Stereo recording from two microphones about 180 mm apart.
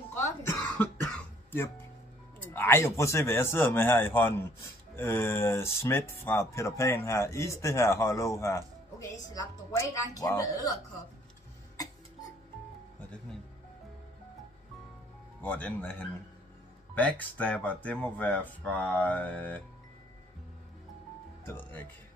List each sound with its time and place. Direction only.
0.1 s music: 15° left (ahead or behind)
2.4 s a woman's voice: 15° left (ahead or behind)
11.7 s cough: 20° left (ahead or behind)
15.4 s speech: 10° left (ahead or behind)
21.5 s speech: 10° left (ahead or behind)